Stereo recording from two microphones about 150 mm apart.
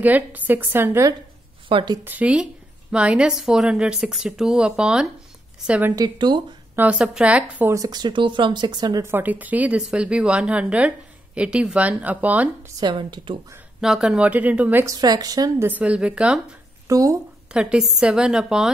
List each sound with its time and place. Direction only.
0.0 s a woman's voice: 10° right (ahead or behind)
1.7 s speech: 35° right (ahead or behind)
2.0 s a woman's voice: 10° right (ahead or behind)
5.9 s speech: 30° right (ahead or behind)
6.7 s a woman's voice: 10° right (ahead or behind)
7.7 s speech: 25° right (ahead or behind)
9.0 s a woman's voice: 10° right (ahead or behind)
12.8 s speech: 30° right (ahead or behind)
13.7 s a woman's voice: 5° right (ahead or behind)
15.0 s speech: 25° right (ahead or behind)
15.7 s a woman's voice: 10° right (ahead or behind)
16.8 s speech: 20° right (ahead or behind)
17.5 s speech: 5° right (ahead or behind)